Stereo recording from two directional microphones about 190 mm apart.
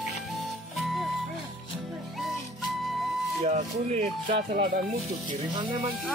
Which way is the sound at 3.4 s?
40° right (ahead or behind).